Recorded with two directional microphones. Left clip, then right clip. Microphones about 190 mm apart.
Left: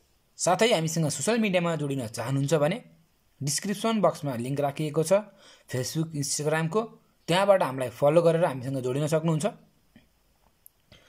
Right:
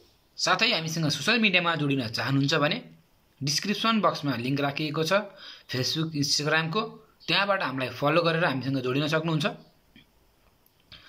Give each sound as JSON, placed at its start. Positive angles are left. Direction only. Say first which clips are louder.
{"t": 0.4, "sound": "speech", "louder": "left 1 dB", "side_deg": 40}